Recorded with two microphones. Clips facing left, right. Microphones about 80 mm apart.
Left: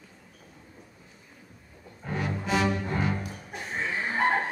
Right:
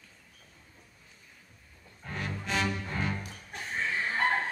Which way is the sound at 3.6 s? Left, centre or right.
Centre.